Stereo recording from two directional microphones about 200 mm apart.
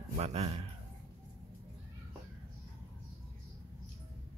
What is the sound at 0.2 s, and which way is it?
Speech, 30° right (ahead or behind).